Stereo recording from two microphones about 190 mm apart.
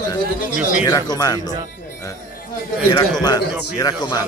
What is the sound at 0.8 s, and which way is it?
Speech, 20° left (ahead or behind).